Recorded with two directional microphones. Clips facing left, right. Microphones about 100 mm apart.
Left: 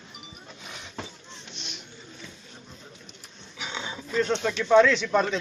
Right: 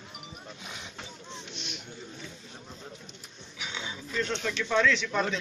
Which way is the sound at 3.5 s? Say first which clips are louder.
Left 3 dB; 30° left (ahead or behind).